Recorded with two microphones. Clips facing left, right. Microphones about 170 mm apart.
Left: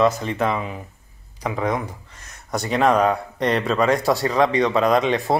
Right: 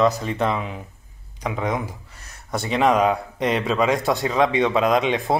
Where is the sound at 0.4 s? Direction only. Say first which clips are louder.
Left 1 dB; centre (ahead or behind).